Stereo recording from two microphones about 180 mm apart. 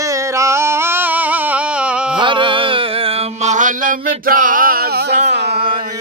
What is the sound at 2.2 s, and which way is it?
Mantra, 25° right (ahead or behind).